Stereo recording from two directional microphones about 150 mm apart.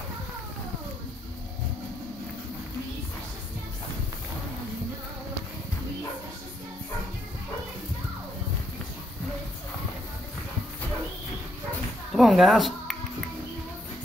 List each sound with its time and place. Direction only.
12.1 s speech: centre (ahead or behind)